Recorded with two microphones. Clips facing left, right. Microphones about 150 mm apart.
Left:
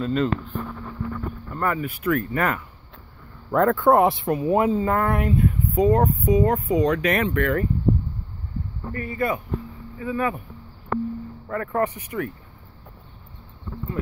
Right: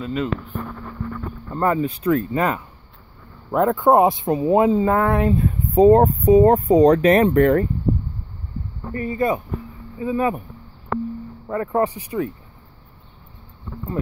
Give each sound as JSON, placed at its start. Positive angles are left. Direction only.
{"t": 0.0, "sound": "speech", "side_deg": -10}
{"t": 1.5, "sound": "speech", "side_deg": -25}
{"t": 8.9, "sound": "speech", "side_deg": -25}
{"t": 11.4, "sound": "speech", "side_deg": -20}
{"t": 11.8, "sound": "speech", "side_deg": -30}